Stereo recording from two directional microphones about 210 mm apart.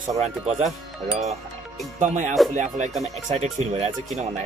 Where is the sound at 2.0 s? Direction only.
35° right (ahead or behind).